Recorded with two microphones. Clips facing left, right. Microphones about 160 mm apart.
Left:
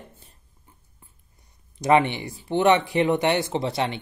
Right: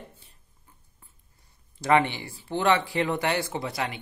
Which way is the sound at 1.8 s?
20° left (ahead or behind).